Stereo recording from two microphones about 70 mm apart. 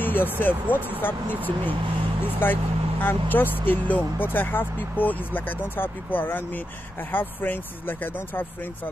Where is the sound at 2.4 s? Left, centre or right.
Left.